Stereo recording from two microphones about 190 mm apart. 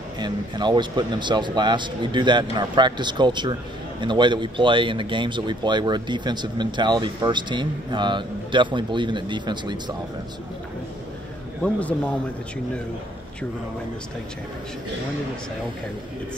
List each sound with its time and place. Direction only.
0.2 s speech: 25° right (ahead or behind)
11.6 s a man's voice: 5° left (ahead or behind)